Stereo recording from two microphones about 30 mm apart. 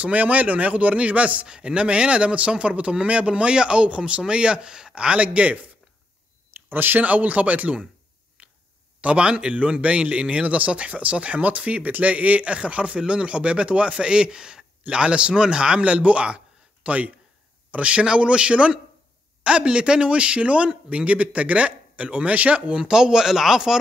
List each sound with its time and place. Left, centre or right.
0.0 s speech: right
0.9 s speech: right
1.5 s a man's voice: right
7.0 s speech: right
8.4 s finger snapping: right
9.0 s a man's voice: right
16.8 s speech: right
17.8 s a man's voice: right
22.8 s speech: right